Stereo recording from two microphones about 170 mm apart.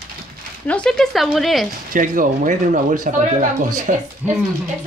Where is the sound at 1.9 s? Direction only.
50° right (ahead or behind).